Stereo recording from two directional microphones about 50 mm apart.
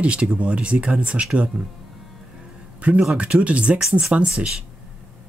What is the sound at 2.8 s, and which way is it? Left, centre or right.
Speech, right.